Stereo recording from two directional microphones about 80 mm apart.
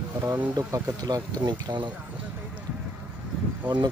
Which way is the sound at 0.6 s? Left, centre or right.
Right.